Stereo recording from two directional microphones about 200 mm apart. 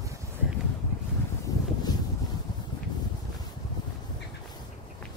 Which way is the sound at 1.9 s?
20° left (ahead or behind).